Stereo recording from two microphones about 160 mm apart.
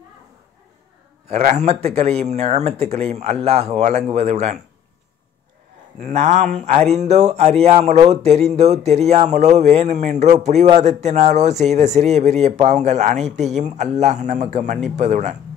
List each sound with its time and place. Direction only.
1.2 s speech: 45° right (ahead or behind)
5.9 s speech: 50° right (ahead or behind)